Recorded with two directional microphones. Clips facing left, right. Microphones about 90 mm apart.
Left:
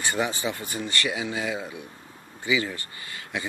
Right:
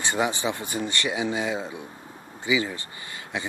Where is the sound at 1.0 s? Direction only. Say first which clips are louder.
Right 3 dB; 25° right (ahead or behind).